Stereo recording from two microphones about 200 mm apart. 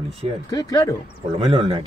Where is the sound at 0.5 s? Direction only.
20° left (ahead or behind).